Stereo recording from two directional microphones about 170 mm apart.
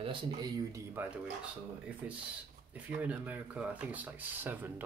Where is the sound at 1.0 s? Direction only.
10° right (ahead or behind).